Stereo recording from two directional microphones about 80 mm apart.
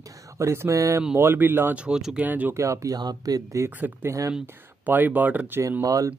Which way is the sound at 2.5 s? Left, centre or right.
Right.